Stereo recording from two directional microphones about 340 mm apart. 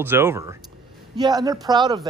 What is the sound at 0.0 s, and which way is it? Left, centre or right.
Speech, centre.